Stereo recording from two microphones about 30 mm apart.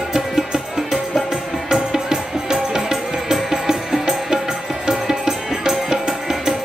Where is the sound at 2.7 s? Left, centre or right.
Centre.